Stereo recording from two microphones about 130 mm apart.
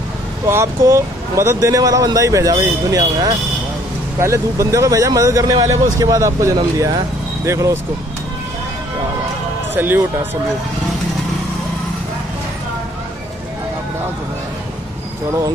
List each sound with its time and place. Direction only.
0.5 s speech: 20° right (ahead or behind)
9.8 s speech: 15° right (ahead or behind)